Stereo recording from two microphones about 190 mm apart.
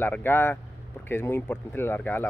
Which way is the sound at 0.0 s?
10° left (ahead or behind).